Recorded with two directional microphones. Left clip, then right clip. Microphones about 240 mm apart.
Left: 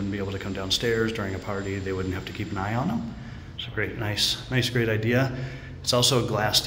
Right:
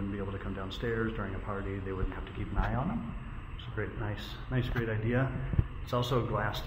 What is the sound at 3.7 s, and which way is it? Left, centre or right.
Speech, left.